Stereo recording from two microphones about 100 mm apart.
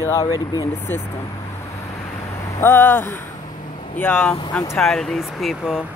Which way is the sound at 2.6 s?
25° left (ahead or behind).